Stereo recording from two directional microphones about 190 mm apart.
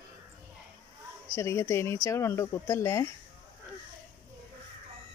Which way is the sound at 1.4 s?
15° left (ahead or behind).